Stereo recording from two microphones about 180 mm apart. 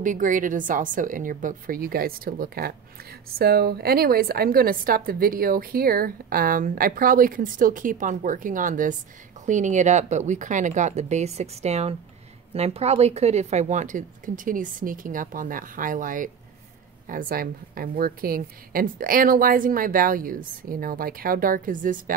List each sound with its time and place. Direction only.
0.0 s a woman's voice: 45° right (ahead or behind)